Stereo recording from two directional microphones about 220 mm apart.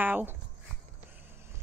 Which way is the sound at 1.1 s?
10° right (ahead or behind).